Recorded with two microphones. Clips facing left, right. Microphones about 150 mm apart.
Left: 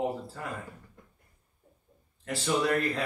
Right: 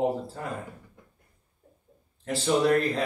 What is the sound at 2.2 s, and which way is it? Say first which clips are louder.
Speech: right 5 dB; 30° right (ahead or behind).